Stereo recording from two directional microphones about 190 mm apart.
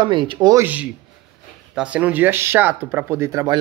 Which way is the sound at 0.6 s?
10° right (ahead or behind).